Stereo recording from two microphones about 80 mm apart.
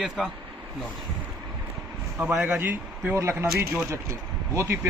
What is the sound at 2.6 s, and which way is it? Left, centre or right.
Speech, right.